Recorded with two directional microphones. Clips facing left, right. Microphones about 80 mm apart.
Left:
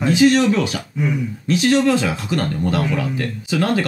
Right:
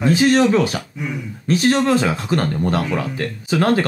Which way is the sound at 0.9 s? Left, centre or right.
Centre.